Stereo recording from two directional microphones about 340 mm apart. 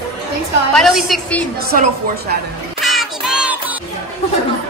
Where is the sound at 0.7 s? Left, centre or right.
Centre.